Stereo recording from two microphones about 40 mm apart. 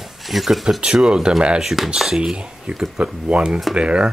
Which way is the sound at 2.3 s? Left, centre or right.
Right.